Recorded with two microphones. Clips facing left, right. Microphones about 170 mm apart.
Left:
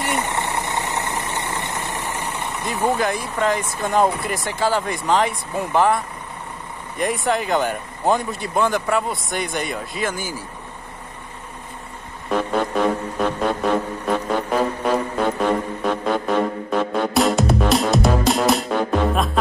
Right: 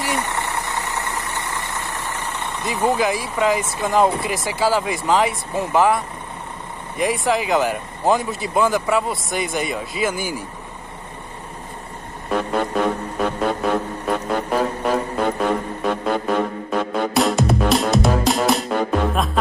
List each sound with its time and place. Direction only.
0.2 s vehicle: 20° left (ahead or behind)
2.6 s speech: centre (ahead or behind)
12.3 s music: centre (ahead or behind)